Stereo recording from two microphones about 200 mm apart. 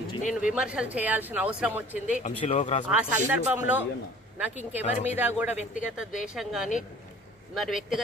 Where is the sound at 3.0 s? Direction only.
10° right (ahead or behind).